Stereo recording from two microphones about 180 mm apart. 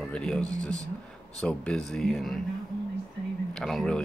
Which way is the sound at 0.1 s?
5° left (ahead or behind).